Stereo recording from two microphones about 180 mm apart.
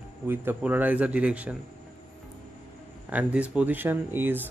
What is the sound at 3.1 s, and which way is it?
A man's voice, 10° right (ahead or behind).